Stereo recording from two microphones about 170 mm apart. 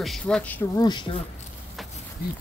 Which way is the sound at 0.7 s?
25° left (ahead or behind).